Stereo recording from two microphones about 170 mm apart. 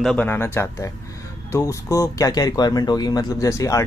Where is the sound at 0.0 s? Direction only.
5° left (ahead or behind).